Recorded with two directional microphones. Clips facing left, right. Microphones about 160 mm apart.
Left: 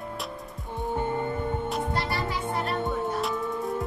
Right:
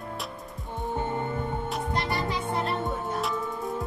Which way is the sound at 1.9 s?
20° right (ahead or behind).